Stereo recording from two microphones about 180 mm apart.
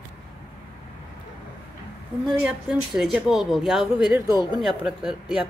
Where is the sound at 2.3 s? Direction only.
5° right (ahead or behind).